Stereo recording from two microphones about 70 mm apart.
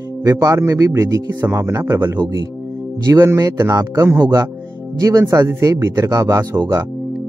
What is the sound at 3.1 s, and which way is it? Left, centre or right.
Speech, right.